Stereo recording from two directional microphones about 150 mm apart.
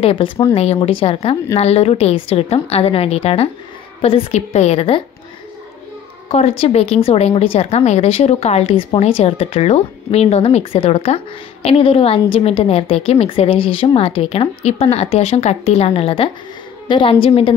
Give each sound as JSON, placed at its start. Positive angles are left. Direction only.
{"t": 0.0, "sound": "a woman's voice", "side_deg": 35}
{"t": 6.2, "sound": "a woman's voice", "side_deg": 40}